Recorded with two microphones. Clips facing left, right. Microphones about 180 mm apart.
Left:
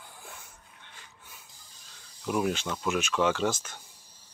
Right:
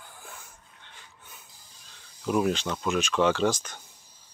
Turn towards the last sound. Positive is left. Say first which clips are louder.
# right 3 dB
turn(degrees=5)  # may be behind; listen again after turning